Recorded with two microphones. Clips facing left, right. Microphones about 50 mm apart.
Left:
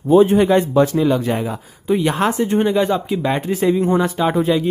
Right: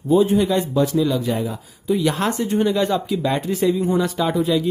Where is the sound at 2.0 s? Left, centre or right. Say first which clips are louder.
Left 3 dB; left.